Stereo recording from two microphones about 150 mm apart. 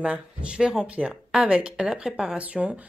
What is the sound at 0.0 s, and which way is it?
Speech, 10° right (ahead or behind).